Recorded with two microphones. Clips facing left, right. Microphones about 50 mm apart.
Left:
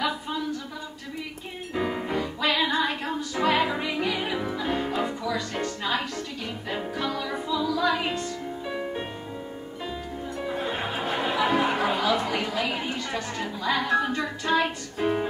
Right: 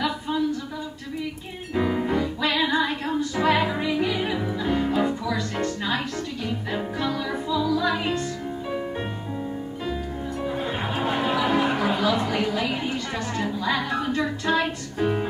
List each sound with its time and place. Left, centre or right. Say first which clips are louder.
1.8 s music: right 4 dB; centre
10.4 s music: right 1 dB; centre
11.3 s a sound: left 1 dB; centre
12.3 s music: right 2 dB; centre